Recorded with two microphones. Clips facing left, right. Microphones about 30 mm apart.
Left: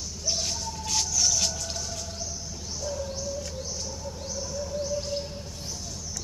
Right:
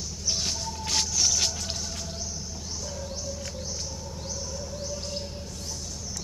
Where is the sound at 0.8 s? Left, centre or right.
Right.